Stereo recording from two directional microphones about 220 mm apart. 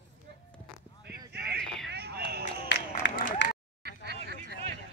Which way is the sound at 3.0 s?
55° left (ahead or behind).